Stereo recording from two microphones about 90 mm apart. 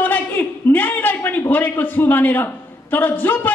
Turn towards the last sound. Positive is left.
turn(degrees=20)  # may be behind; listen again after turning